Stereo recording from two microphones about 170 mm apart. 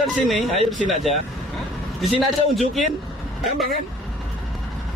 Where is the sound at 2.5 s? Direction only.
Centre (ahead or behind).